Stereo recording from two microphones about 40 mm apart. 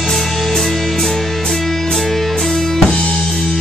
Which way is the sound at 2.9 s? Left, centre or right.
Left.